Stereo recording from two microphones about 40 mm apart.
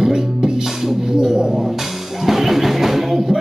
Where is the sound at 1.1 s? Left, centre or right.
Centre.